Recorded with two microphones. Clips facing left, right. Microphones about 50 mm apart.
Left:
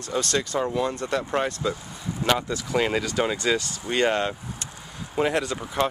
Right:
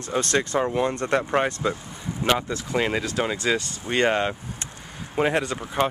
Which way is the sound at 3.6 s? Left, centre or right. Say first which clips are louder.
Right 1 dB; right.